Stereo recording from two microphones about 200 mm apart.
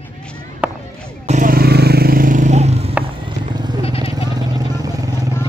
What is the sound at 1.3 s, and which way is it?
Vehicle, 45° right (ahead or behind).